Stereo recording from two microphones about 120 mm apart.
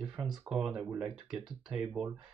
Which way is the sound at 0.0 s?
5° right (ahead or behind).